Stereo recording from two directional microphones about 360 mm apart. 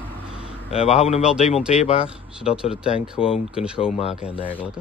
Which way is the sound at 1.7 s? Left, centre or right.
Centre.